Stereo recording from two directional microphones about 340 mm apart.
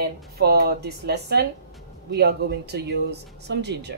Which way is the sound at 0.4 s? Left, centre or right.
Right.